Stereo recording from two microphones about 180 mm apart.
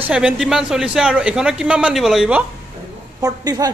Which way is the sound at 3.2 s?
20° right (ahead or behind).